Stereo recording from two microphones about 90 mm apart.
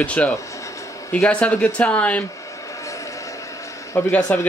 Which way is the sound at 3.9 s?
20° left (ahead or behind).